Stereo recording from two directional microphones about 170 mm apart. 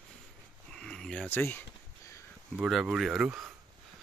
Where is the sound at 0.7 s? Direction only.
5° left (ahead or behind).